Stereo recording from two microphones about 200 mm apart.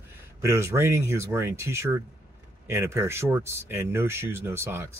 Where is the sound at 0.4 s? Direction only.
15° right (ahead or behind).